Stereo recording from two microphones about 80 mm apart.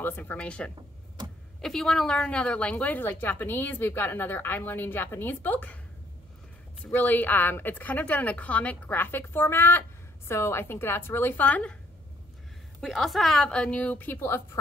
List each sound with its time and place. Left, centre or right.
0.0 s a woman's voice: left
6.9 s a woman's voice: left
12.8 s a woman's voice: centre; by 14.6 s left